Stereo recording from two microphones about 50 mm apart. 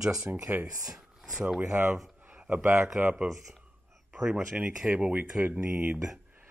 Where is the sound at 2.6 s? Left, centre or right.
Right.